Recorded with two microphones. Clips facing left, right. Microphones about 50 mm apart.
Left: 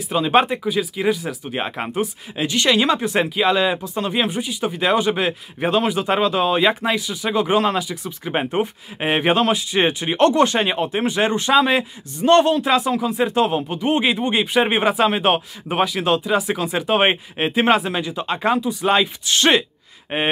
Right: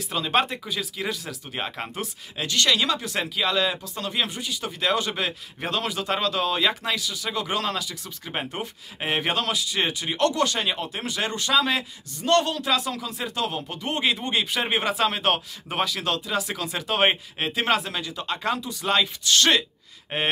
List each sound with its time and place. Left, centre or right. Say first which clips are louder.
0.1 s speech: left 7 dB; centre